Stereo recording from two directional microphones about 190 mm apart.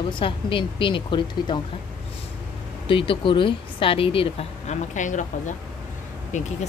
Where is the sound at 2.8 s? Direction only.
25° left (ahead or behind).